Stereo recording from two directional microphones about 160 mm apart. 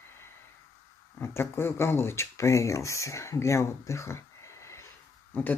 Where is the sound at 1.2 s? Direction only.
15° left (ahead or behind).